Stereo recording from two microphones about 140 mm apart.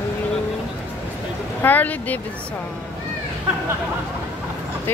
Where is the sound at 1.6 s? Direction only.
10° left (ahead or behind).